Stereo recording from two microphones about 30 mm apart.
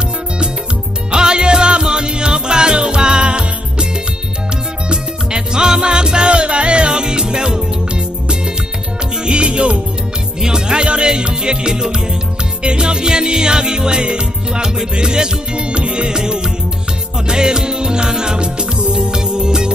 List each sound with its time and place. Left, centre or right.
1.1 s music: right
4.8 s music: right
10.4 s music: right
16.2 s music: right